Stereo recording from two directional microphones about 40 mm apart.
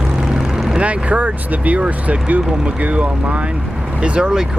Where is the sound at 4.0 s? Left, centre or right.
Right.